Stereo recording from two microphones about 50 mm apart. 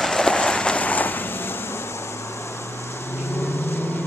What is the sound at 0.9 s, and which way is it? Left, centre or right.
Vehicle, left.